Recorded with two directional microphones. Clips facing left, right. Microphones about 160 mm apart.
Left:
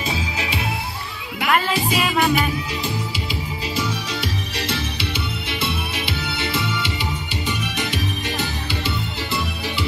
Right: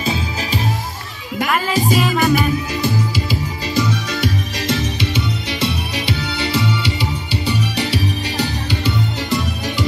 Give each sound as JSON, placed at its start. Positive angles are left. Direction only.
{"t": 0.0, "sound": "music", "side_deg": -40}
{"t": 1.7, "sound": "music", "side_deg": -40}
{"t": 4.6, "sound": "music", "side_deg": -45}
{"t": 6.2, "sound": "music", "side_deg": -40}